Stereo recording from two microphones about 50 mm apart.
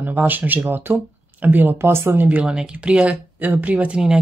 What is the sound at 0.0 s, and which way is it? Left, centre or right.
Speech, right.